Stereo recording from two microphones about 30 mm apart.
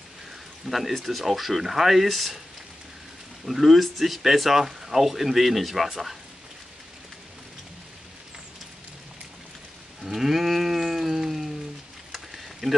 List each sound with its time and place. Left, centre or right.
0.7 s speech: centre
3.4 s speech: centre
10.0 s music: centre
12.1 s a sound: centre